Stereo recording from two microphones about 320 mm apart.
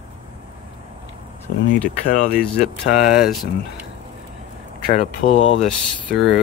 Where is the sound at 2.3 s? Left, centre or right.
Centre.